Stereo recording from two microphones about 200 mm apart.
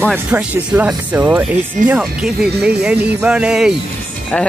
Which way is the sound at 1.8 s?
40° right (ahead or behind).